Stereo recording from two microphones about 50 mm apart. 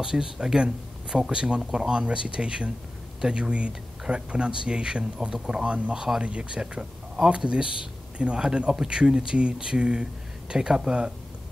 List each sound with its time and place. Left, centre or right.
0.0 s speech: centre